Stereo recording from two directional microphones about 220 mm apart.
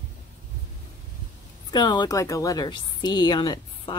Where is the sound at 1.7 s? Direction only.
20° left (ahead or behind).